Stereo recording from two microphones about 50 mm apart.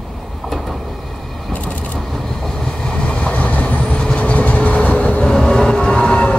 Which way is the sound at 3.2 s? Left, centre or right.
Left.